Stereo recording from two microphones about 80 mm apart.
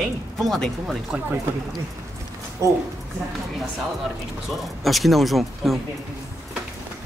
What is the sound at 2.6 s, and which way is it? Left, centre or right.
Speech, right.